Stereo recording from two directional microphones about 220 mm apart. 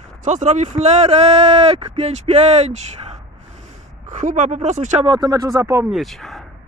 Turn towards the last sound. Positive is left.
turn(degrees=0)  # may be behind; listen again after turning